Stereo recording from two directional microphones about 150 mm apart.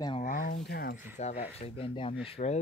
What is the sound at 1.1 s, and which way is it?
Speech, 45° left (ahead or behind).